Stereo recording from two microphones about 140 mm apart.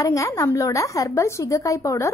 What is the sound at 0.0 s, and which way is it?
A woman's voice, 20° left (ahead or behind).